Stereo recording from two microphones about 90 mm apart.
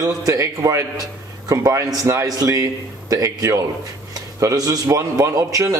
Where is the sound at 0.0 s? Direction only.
40° right (ahead or behind).